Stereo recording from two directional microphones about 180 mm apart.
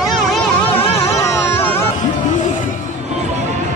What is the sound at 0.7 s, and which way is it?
Music, 15° left (ahead or behind).